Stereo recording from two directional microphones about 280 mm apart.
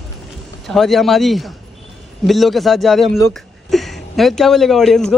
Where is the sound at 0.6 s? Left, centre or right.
Centre.